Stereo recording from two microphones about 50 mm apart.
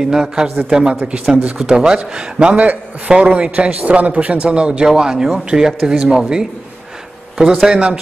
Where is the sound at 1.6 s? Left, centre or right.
Centre.